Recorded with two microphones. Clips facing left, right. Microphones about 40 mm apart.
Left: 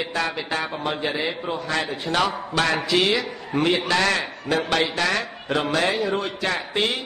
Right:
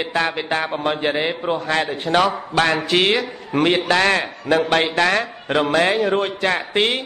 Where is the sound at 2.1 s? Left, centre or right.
Right.